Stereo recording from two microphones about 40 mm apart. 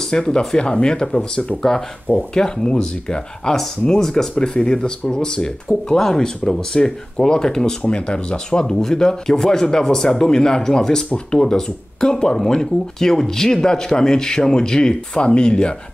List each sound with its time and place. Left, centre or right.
0.1 s speech: centre